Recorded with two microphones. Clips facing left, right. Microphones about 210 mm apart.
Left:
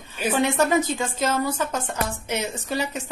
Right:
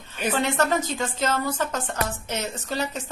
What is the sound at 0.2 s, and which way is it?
A woman's voice, 10° left (ahead or behind).